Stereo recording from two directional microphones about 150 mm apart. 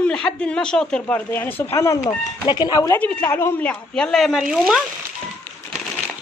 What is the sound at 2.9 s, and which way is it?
Speech, 15° left (ahead or behind).